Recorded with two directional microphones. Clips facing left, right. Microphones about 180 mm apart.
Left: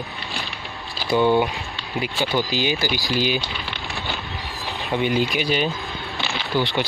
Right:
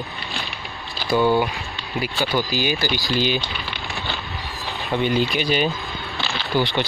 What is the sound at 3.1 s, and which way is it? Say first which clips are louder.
Speech: right 1 dB; 5° left (ahead or behind).